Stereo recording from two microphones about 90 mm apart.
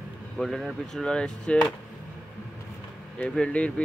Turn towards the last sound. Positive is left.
turn(degrees=15)  # may be behind; listen again after turning